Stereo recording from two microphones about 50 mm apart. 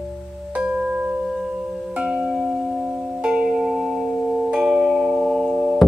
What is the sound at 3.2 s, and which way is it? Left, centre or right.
Music, centre.